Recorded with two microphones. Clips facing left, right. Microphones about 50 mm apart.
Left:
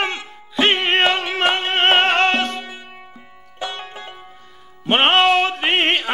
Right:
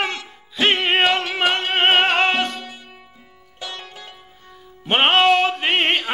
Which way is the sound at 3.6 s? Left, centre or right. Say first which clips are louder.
Left 5 dB; left.